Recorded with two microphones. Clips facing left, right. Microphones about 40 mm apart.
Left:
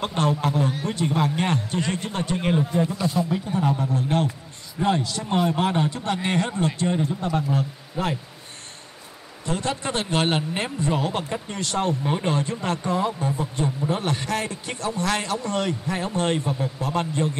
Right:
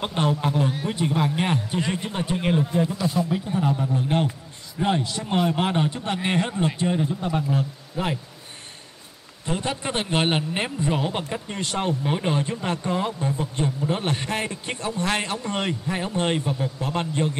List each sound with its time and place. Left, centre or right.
0.0 s a man's voice: centre
3.9 s a man's voice: right
6.9 s a man's voice: centre
9.5 s a man's voice: centre
16.8 s a man's voice: right